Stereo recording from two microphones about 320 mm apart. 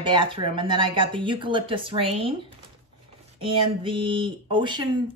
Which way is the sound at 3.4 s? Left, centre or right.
Centre.